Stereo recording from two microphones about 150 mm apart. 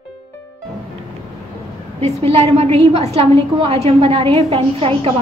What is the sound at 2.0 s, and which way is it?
A woman's voice, 45° right (ahead or behind).